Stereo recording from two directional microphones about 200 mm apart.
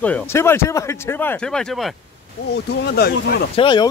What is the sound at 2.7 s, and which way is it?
Speech, 55° left (ahead or behind).